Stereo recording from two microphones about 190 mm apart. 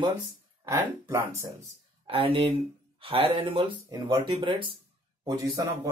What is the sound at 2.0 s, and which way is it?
Speech, 30° right (ahead or behind).